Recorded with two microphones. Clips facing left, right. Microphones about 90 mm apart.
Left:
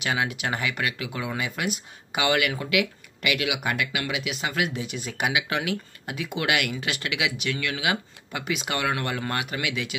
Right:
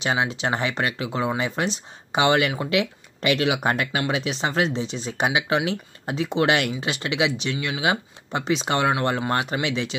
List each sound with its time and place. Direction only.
0.0 s speech: 25° right (ahead or behind)